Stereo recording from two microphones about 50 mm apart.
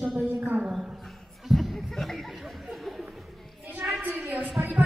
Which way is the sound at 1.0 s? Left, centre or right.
Centre.